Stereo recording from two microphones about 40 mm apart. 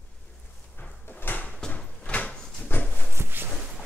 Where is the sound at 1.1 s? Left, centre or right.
Left.